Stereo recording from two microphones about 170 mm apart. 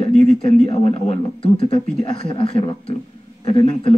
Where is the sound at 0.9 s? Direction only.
30° left (ahead or behind).